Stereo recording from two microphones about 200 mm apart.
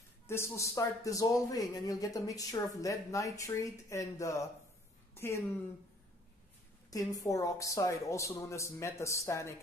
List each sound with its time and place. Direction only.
0.3 s speech: 10° left (ahead or behind)
5.1 s a sound: 10° left (ahead or behind)
6.9 s speech: 15° left (ahead or behind)